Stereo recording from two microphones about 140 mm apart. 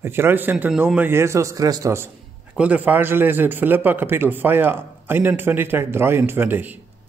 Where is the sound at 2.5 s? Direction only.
10° right (ahead or behind).